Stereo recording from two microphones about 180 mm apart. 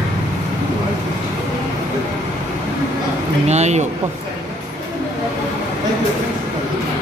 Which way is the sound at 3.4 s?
40° right (ahead or behind).